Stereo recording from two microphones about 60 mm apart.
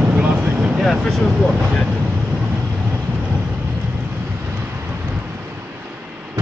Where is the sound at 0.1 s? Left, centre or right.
Right.